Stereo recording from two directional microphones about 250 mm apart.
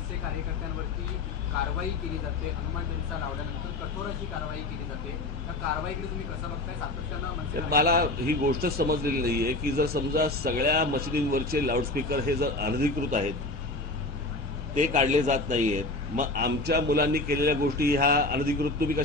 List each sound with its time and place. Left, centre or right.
7.7 s a man's voice: right
14.8 s a man's voice: right